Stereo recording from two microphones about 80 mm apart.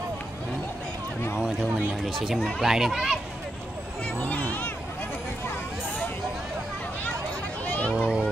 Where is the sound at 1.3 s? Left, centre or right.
Centre.